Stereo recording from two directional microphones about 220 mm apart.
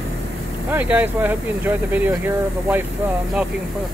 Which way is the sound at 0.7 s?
10° right (ahead or behind).